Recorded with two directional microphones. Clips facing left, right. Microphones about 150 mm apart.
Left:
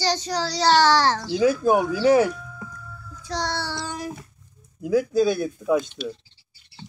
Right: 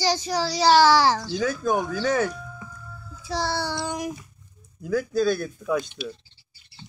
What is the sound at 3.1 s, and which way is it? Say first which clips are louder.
Child singing: right 1 dB; 10° right (ahead or behind).